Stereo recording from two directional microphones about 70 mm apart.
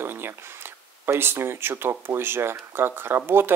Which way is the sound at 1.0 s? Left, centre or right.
Right.